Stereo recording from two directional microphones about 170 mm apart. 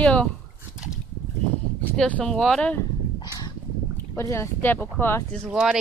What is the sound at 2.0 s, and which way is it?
Speech, 5° left (ahead or behind).